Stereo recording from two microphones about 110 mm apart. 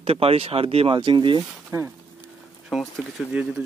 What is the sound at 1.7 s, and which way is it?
Speech, 30° right (ahead or behind).